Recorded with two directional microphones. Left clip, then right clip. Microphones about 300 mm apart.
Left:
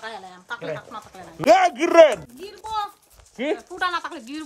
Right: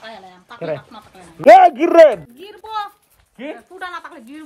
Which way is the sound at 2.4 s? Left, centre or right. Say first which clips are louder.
Right 2 dB; right.